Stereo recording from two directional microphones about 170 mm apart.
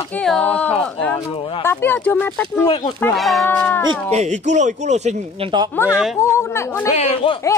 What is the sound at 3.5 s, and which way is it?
Speech, 10° left (ahead or behind).